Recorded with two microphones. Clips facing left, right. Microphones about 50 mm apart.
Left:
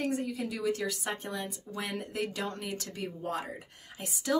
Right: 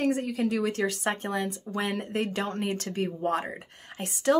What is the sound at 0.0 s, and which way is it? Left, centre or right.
Speech, right.